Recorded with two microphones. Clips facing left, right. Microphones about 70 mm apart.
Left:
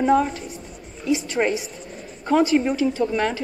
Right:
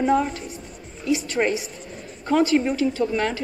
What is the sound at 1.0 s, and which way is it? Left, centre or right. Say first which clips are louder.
A woman's voice: left 1 dB; left.